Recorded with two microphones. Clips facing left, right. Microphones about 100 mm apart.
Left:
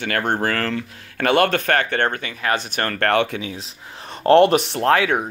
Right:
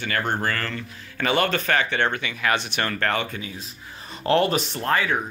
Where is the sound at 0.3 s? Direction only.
75° left (ahead or behind); by 3.0 s 45° left (ahead or behind).